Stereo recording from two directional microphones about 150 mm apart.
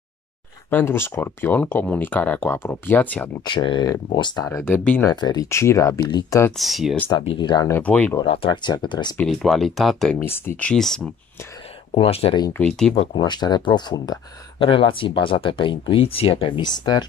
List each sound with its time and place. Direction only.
0.7 s speech: 15° left (ahead or behind)
3.4 s speech: 30° left (ahead or behind); by 5.1 s 15° left (ahead or behind)
5.1 s speech: 25° left (ahead or behind)
6.5 s speech: centre (ahead or behind)
7.1 s speech: 35° left (ahead or behind)
7.6 s speech: 15° left (ahead or behind)
8.2 s speech: 35° left (ahead or behind)
9.3 s speech: centre (ahead or behind)
10.2 s speech: 15° left (ahead or behind)
10.6 s speech: 5° left (ahead or behind)
11.9 s speech: 40° left (ahead or behind)
12.5 s speech: 5° left (ahead or behind)
12.9 s speech: 30° left (ahead or behind)